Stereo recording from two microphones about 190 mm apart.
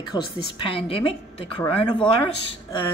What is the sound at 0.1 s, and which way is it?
A woman's voice, 25° left (ahead or behind).